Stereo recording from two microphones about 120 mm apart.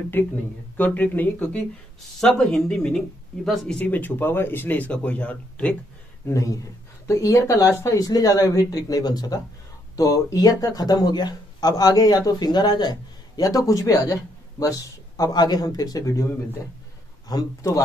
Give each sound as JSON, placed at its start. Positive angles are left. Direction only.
{"t": 0.2, "sound": "speech", "side_deg": 15}
{"t": 6.2, "sound": "speech", "side_deg": 25}
{"t": 17.3, "sound": "speech", "side_deg": 30}